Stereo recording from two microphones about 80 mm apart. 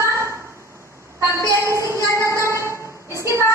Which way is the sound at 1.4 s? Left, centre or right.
Right.